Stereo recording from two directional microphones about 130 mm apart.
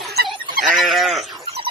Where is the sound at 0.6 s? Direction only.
Centre (ahead or behind).